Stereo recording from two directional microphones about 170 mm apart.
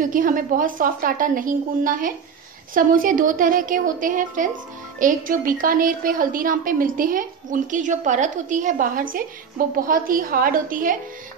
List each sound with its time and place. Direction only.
0.0 s a woman's voice: 50° right (ahead or behind)